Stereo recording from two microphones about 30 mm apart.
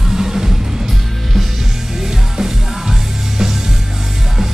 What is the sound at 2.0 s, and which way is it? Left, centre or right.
Music, centre.